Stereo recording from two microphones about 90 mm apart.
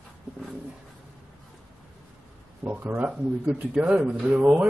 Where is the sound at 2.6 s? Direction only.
20° right (ahead or behind).